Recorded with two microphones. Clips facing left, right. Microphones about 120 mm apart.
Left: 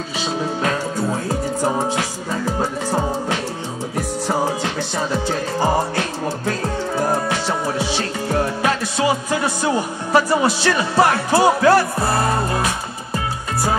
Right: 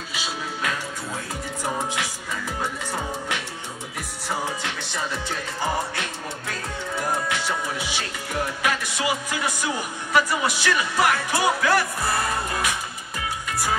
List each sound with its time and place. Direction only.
0.2 s music: 35° left (ahead or behind)
9.6 s speech: 35° left (ahead or behind)